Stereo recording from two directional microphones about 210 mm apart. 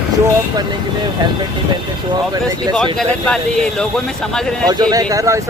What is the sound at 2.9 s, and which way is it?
Speech, 5° left (ahead or behind).